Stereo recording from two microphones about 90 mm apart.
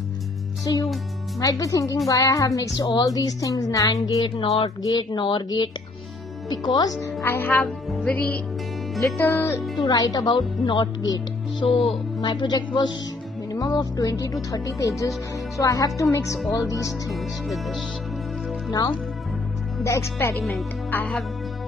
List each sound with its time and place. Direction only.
0.7 s speech: 50° left (ahead or behind)
4.8 s speech: 55° left (ahead or behind)
7.2 s speech: 25° left (ahead or behind)
7.6 s music: 15° left (ahead or behind)
9.2 s speech: 25° left (ahead or behind)
9.8 s speech: 45° left (ahead or behind)
11.6 s music: 90° left
12.2 s speech: 55° left (ahead or behind); by 16.9 s 35° left (ahead or behind)
17.1 s speech: centre (ahead or behind)
18.7 s speech: 50° left (ahead or behind)
19.8 s speech: 30° left (ahead or behind)